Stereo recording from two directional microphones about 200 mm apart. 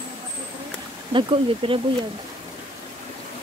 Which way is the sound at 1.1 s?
25° right (ahead or behind).